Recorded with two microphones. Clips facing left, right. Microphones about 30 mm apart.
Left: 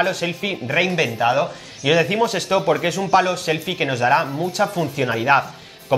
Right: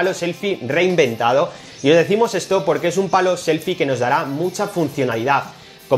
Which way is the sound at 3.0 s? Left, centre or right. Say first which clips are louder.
Left 2 dB; left.